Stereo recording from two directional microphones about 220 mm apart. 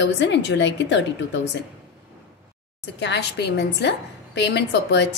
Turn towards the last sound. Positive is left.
turn(degrees=50)  # may be behind; listen again after turning